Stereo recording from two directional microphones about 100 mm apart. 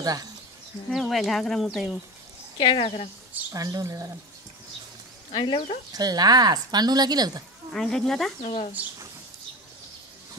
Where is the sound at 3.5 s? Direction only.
35° right (ahead or behind).